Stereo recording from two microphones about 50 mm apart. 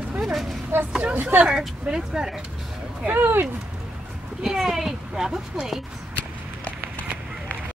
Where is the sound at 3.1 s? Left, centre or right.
Right.